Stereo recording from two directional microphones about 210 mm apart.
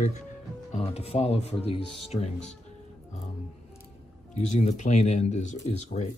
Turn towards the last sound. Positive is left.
turn(degrees=35)  # may be behind; listen again after turning